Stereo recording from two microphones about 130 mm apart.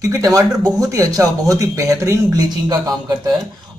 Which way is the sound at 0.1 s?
25° right (ahead or behind).